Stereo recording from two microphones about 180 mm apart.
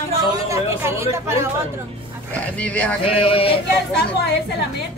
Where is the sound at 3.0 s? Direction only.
30° left (ahead or behind).